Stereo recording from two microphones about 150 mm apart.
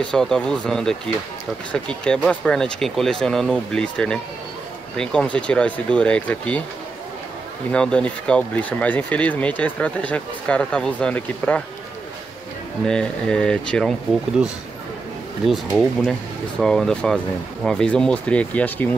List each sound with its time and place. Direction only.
0.1 s speech: 5° left (ahead or behind)
7.7 s speech: 5° left (ahead or behind)
12.8 s speech: 5° left (ahead or behind)
15.4 s speech: centre (ahead or behind)